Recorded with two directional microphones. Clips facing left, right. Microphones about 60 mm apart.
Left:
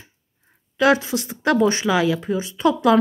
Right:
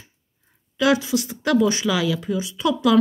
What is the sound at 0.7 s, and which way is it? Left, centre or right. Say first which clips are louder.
Speech: left 2 dB; left.